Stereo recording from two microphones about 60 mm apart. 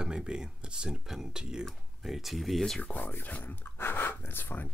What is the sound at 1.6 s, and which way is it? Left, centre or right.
Speech, centre.